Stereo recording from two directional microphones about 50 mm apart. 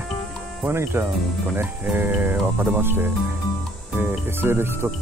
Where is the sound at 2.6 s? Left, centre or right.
Right.